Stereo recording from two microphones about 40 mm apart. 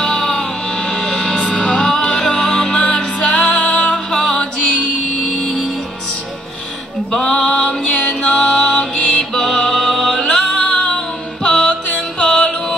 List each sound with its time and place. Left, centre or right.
0.0 s music: centre
4.1 s music: centre
5.2 s music: left
7.1 s music: centre
9.3 s music: centre
10.5 s music: left